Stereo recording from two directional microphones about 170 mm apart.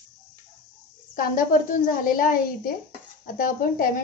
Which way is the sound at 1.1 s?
55° left (ahead or behind).